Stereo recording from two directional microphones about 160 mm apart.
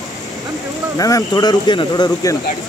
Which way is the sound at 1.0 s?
25° left (ahead or behind).